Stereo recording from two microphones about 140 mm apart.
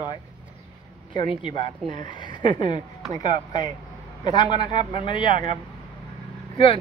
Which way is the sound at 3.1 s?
65° right (ahead or behind).